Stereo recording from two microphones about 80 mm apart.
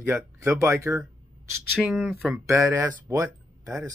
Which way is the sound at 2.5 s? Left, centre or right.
Right.